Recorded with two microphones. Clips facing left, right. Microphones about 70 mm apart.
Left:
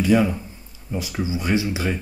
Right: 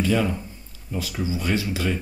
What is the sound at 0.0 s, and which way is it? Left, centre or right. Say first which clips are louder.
Speech: left 4 dB; centre.